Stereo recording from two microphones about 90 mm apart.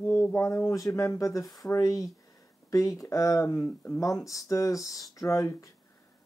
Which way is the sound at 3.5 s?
25° left (ahead or behind).